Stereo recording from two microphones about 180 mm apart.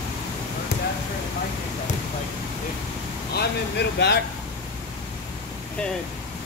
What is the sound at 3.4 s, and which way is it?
Vehicle, 65° left (ahead or behind).